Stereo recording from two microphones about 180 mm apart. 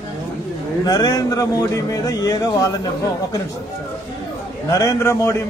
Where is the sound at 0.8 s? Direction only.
20° left (ahead or behind).